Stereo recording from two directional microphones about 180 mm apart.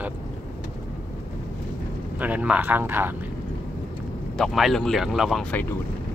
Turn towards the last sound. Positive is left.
turn(degrees=0)  # may be behind; listen again after turning